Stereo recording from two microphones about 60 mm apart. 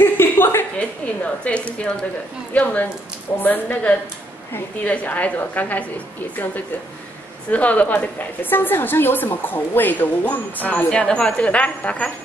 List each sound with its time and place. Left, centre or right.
0.0 s a sound: left
0.7 s a woman's voice: left
4.8 s speech: left
7.5 s a woman's voice: left
10.9 s speech: centre